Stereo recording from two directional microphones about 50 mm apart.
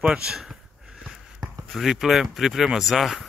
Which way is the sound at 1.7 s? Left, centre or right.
Centre.